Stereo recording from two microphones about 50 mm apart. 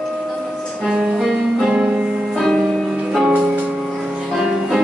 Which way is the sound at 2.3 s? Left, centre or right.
Centre.